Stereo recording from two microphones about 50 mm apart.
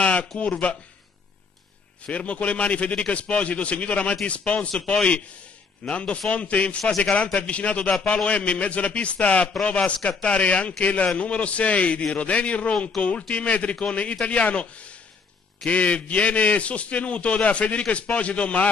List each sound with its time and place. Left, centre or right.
0.0 s a sound: left
0.4 s a man's voice: left
2.0 s a man's voice: left
9.5 s a man's voice: centre